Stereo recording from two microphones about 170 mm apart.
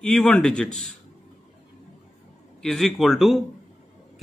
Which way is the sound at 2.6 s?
Centre (ahead or behind).